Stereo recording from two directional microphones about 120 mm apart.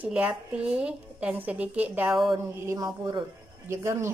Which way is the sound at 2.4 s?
25° right (ahead or behind).